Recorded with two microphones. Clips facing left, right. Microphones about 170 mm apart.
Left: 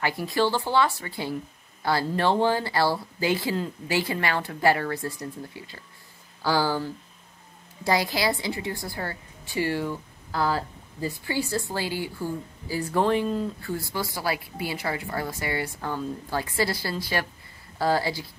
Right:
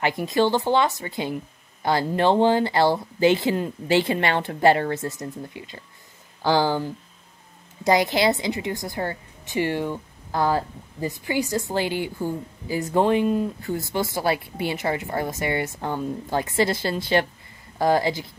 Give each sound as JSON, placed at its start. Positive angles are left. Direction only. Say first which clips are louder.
{"t": 0.0, "sound": "a woman's voice", "louder": "right 3 dB", "side_deg": -20}